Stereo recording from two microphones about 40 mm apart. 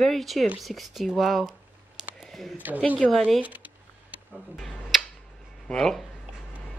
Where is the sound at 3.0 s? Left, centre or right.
Left.